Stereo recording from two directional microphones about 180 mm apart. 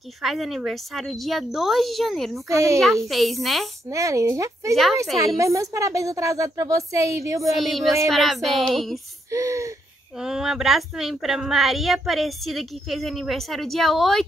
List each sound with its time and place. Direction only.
0.2 s speech: centre (ahead or behind)
2.5 s a woman's voice: 15° right (ahead or behind)
3.1 s speech: centre (ahead or behind)
3.9 s a woman's voice: 15° right (ahead or behind)
7.5 s speech: centre (ahead or behind)
9.3 s a woman's voice: 15° right (ahead or behind)
10.2 s speech: centre (ahead or behind)